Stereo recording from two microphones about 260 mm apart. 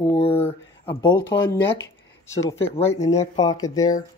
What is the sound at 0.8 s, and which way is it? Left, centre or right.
Speech, centre.